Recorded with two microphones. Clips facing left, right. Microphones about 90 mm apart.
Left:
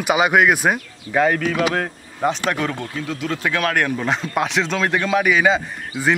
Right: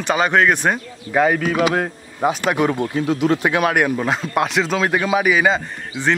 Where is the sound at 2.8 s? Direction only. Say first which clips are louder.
Right 8 dB; 30° right (ahead or behind).